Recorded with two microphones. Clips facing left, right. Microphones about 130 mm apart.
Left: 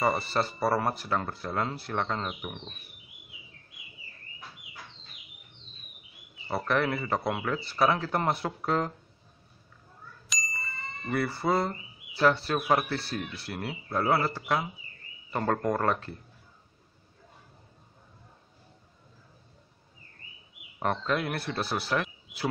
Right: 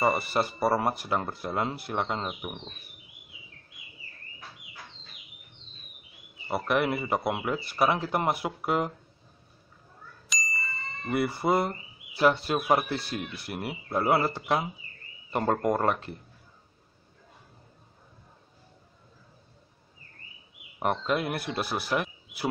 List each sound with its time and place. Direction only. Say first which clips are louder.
0.0 s speech: right 1 dB; 10° right (ahead or behind)
6.4 s speech: right 1 dB; 15° right (ahead or behind)
10.2 s ding: right 3 dB; centre (ahead or behind)
11.1 s speech: right 2 dB; 15° right (ahead or behind)
20.8 s speech: right 1 dB; 15° right (ahead or behind)